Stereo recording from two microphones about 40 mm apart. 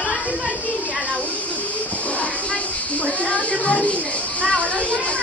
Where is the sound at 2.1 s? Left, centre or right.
Left.